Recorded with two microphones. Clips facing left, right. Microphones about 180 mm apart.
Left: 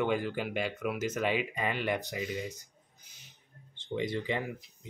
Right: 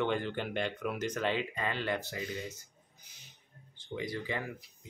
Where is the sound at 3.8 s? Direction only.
25° left (ahead or behind).